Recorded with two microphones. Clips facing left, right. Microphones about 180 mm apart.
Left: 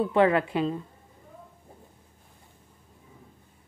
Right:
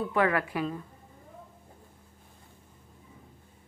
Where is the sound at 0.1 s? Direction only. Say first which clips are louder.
Left 4 dB; 25° left (ahead or behind).